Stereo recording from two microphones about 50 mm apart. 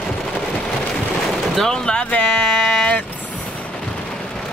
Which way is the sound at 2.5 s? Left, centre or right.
Centre.